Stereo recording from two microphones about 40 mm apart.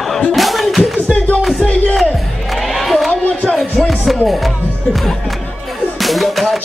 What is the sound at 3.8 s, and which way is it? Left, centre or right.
Music, centre.